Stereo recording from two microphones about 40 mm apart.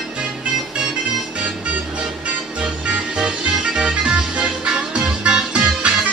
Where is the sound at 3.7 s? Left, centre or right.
Right.